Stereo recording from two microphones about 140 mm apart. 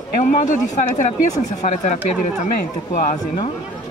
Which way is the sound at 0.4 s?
60° left (ahead or behind).